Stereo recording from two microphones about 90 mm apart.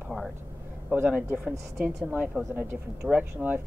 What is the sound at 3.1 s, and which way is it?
Speech, 20° right (ahead or behind).